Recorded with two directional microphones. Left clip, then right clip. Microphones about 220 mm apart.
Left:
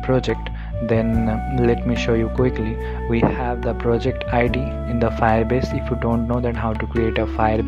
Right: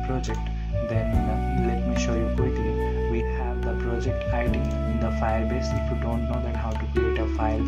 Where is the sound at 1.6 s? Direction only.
40° left (ahead or behind).